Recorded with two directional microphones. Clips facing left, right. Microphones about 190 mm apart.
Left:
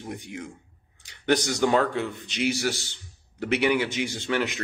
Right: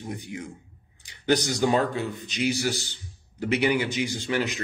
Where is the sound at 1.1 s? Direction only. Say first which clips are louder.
Even; 60° left (ahead or behind).